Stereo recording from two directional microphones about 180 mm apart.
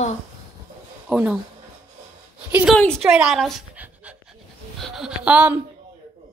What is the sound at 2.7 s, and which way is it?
A woman's voice, 5° left (ahead or behind).